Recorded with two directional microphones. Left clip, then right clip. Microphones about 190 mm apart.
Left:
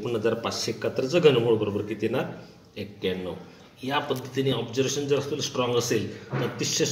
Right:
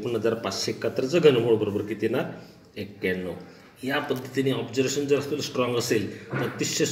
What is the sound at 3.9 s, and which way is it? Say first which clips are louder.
Speech: even; 10° right (ahead or behind).